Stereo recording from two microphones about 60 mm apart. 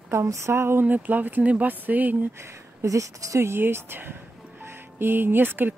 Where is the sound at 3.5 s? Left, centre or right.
Right.